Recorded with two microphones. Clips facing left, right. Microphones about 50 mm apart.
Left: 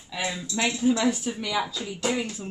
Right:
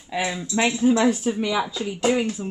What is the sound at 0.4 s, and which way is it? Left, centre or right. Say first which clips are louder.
Speech: right 5 dB; right.